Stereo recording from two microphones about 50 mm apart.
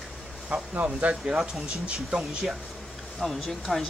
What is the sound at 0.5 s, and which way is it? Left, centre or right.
Speech, right.